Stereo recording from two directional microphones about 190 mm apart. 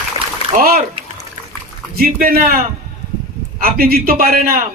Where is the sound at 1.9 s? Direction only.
50° right (ahead or behind).